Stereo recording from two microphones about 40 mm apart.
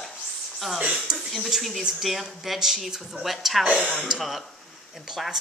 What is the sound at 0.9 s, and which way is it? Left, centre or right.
Speech, centre.